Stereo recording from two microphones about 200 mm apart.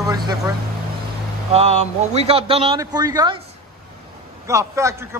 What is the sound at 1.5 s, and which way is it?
A man's voice, 30° right (ahead or behind).